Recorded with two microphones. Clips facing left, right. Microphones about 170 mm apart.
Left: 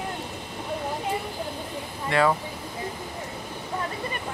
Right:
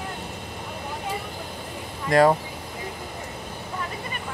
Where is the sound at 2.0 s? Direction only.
40° right (ahead or behind).